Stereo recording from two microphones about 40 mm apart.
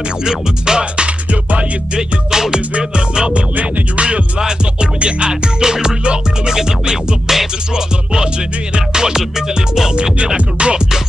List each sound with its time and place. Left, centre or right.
0.2 s music: centre
3.5 s music: right
4.4 s music: centre
10.1 s music: right